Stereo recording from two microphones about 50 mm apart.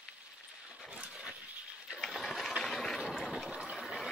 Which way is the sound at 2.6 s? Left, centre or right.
Centre.